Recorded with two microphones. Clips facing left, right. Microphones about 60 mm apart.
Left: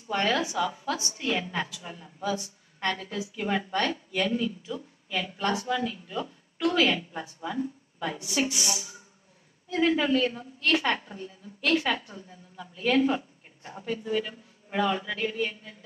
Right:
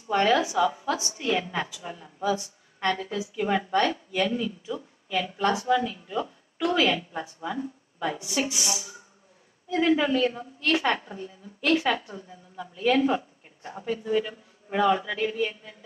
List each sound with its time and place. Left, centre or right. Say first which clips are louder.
0.1 s a woman's voice: right 4 dB; centre
3.1 s a woman's voice: right 3 dB; centre
8.5 s a sound: even; centre
9.8 s a woman's voice: right 1 dB; centre
14.2 s a man's voice: right 2 dB; centre
15.0 s a sound: right 2 dB; centre